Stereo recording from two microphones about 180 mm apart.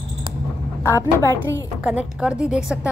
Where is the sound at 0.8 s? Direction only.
15° left (ahead or behind).